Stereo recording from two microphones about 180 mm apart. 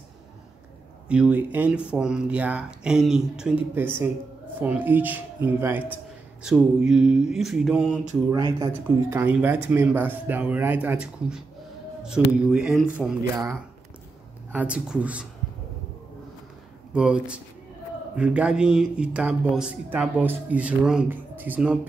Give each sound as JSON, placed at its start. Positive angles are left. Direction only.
{"t": 1.0, "sound": "a man's voice", "side_deg": -5}
{"t": 8.3, "sound": "speech", "side_deg": -20}
{"t": 9.1, "sound": "speech", "side_deg": -10}
{"t": 12.4, "sound": "a man's voice", "side_deg": -5}
{"t": 14.5, "sound": "speech", "side_deg": -5}
{"t": 16.9, "sound": "a man's voice", "side_deg": -5}